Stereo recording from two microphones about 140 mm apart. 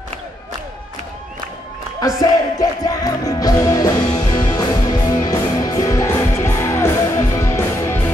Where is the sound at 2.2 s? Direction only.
25° left (ahead or behind).